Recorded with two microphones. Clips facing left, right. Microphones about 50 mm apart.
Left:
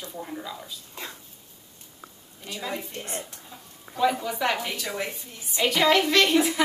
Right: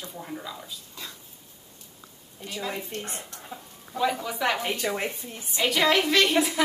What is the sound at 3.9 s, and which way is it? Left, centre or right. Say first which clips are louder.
Speech: left 2 dB; centre.